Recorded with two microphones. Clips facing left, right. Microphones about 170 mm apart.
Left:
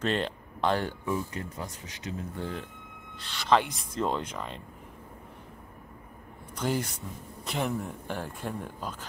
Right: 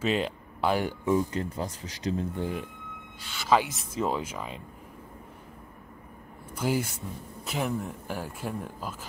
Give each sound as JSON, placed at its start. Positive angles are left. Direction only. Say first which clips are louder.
{"t": 0.0, "sound": "speech", "louder": "right 2 dB", "side_deg": -5}
{"t": 1.0, "sound": "speech", "louder": "right 6 dB", "side_deg": -30}
{"t": 2.3, "sound": "speech", "louder": "right 4 dB", "side_deg": -15}
{"t": 6.5, "sound": "speech", "louder": "right 2 dB", "side_deg": -10}